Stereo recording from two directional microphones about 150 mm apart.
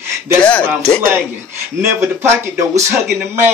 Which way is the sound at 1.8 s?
15° right (ahead or behind).